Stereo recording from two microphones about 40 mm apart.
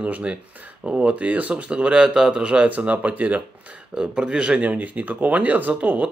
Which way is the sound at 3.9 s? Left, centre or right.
Right.